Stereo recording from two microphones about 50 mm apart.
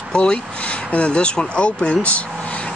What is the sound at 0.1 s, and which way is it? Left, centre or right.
Speech, centre.